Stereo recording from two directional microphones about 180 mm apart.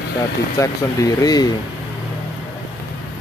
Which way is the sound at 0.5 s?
20° left (ahead or behind).